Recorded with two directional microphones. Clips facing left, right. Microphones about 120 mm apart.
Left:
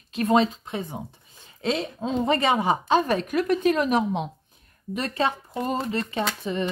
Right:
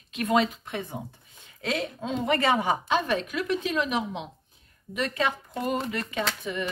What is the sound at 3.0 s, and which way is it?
A woman's voice, 45° left (ahead or behind).